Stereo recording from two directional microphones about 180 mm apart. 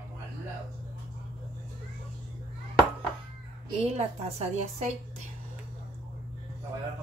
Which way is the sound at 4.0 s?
35° right (ahead or behind).